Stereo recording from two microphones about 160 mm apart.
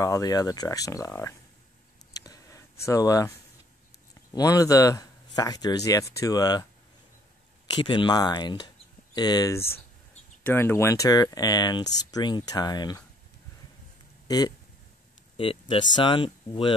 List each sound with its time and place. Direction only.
0.0 s speech: 20° left (ahead or behind)
2.1 s a sound: 25° left (ahead or behind)
4.3 s speech: 25° left (ahead or behind)
7.7 s speech: 30° left (ahead or behind)
14.2 s speech: 25° left (ahead or behind)